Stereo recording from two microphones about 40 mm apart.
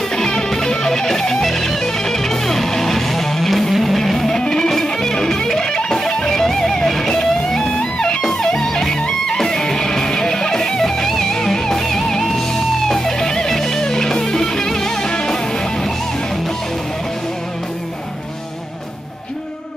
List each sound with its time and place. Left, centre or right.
0.1 s music: centre
4.4 s music: centre